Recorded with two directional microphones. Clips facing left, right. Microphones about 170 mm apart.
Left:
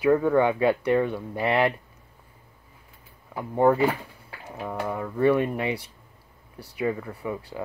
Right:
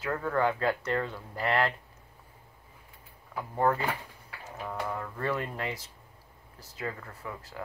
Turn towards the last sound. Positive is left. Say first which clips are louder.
# left 8 dB
turn(degrees=15)  # may be behind; listen again after turning